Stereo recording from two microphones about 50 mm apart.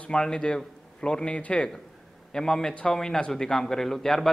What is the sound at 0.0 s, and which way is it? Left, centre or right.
A man's voice, centre.